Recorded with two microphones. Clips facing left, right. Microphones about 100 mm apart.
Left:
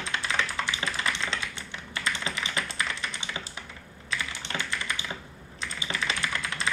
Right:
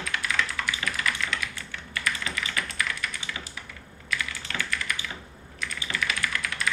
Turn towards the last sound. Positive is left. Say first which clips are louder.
# right 1 dB
turn(degrees=25)  # may be behind; listen again after turning